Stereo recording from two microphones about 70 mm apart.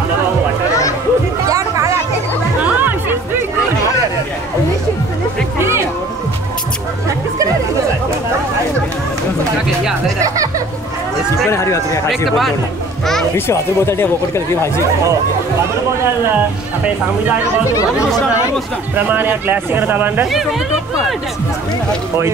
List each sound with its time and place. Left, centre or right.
2.6 s music: right
11.5 s a sound: left
12.3 s a sound: centre
13.5 s speech: left
17.7 s speech: left
18.9 s speech: right